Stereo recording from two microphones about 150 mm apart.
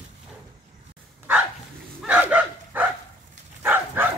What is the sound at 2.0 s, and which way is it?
Dog, 10° right (ahead or behind).